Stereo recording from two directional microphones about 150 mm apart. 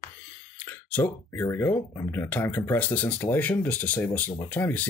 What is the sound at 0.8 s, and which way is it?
Speech, 10° left (ahead or behind).